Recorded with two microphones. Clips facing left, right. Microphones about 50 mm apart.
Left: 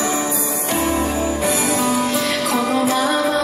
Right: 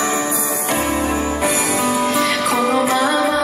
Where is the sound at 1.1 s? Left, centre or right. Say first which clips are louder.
Right 1 dB; right.